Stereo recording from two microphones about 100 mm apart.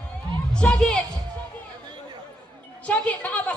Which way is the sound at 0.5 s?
10° left (ahead or behind).